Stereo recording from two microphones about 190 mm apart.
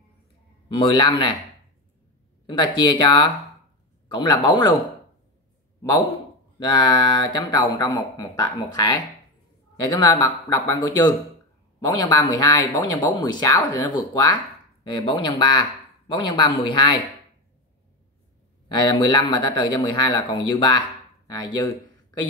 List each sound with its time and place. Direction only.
0.7 s speech: 25° left (ahead or behind)
2.4 s speech: 25° left (ahead or behind)
6.6 s speech: 25° left (ahead or behind)
18.7 s speech: 25° left (ahead or behind)